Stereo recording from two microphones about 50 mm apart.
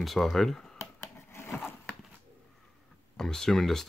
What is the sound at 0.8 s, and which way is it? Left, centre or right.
Wood, left.